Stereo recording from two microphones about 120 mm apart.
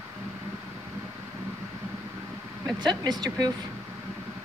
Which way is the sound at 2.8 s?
35° right (ahead or behind).